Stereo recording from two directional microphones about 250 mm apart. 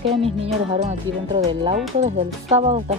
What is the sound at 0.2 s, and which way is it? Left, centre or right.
Speech, right.